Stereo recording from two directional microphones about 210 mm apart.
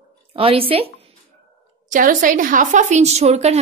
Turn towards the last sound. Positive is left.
turn(degrees=-30)  # may be behind; listen again after turning